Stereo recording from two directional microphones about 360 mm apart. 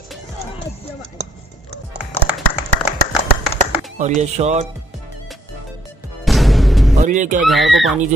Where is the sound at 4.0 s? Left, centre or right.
Centre.